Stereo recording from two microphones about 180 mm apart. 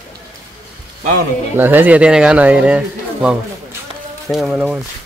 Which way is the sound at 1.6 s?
10° right (ahead or behind).